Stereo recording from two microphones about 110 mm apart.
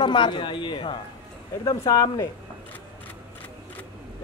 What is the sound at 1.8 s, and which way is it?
Speech, 30° left (ahead or behind).